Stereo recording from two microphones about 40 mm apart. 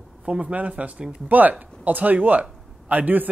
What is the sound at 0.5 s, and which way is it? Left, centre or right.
Speech, right.